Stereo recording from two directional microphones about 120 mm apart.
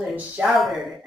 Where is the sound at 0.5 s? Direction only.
Centre (ahead or behind).